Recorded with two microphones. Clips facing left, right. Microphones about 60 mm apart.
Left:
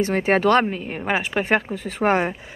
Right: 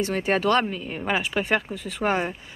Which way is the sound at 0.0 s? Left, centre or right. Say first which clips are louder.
Left 4 dB; left.